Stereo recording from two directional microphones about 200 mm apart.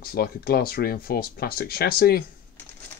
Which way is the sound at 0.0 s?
50° left (ahead or behind).